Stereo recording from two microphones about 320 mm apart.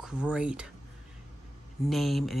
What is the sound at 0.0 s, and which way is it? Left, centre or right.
Speech, centre.